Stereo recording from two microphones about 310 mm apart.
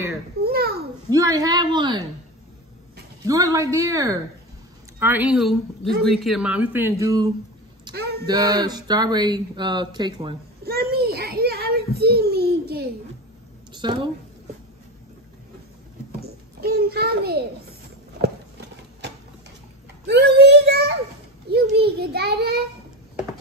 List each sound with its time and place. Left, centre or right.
0.4 s a child's voice: right
1.1 s speech: centre
3.3 s a woman's voice: centre
7.9 s a sound: right
8.3 s speech: centre
10.6 s child singing: right
13.7 s a woman's voice: centre
16.1 s a sound: right
18.2 s horse: right
20.1 s a child's voice: right